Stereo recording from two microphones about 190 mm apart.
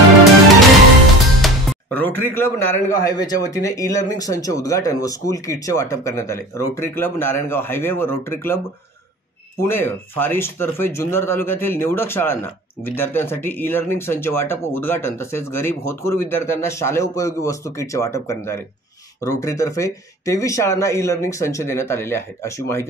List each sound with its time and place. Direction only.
1.4 s a man's voice: 5° left (ahead or behind)
9.6 s a man's voice: 10° left (ahead or behind)